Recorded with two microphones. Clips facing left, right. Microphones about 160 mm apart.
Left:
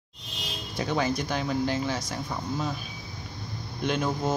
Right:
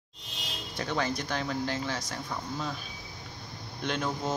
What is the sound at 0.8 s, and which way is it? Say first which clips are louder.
Speech: left 4 dB; 10° left (ahead or behind).